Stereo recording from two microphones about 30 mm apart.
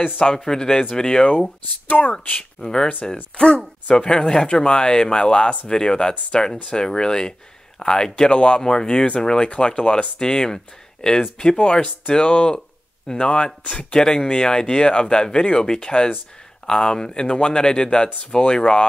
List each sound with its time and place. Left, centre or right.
0.2 s speech: left
1.9 s speech: left
2.6 s speech: left
5.2 s speech: left
11.5 s speech: left
12.5 s a sound: left
13.7 s speech: left
13.9 s speech: left